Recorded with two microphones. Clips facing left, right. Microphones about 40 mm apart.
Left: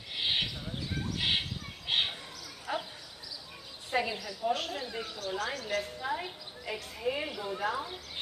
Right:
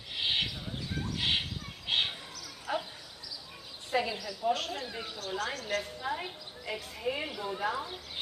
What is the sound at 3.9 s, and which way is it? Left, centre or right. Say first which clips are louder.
A woman's voice: even; centre.